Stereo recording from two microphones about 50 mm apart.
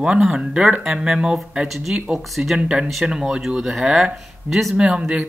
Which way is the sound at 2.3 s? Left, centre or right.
Centre.